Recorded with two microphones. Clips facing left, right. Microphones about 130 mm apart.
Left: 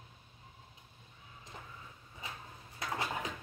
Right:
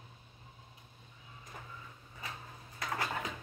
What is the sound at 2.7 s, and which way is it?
Dishes, 15° left (ahead or behind).